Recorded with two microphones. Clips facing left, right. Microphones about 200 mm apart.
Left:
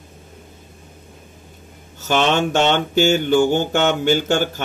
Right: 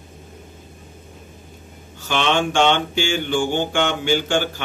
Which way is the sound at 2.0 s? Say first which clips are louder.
Left 3 dB; 45° left (ahead or behind).